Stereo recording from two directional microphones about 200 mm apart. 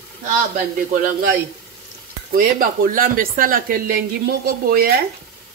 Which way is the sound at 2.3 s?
45° right (ahead or behind).